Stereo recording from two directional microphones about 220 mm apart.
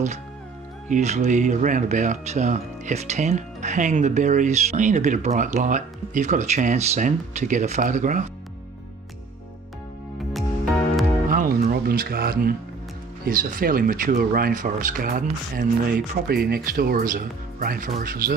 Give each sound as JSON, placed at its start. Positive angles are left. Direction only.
{"t": 0.8, "sound": "speech", "side_deg": -35}
{"t": 10.3, "sound": "music", "side_deg": 0}
{"t": 11.2, "sound": "music", "side_deg": -40}
{"t": 13.2, "sound": "speech", "side_deg": -40}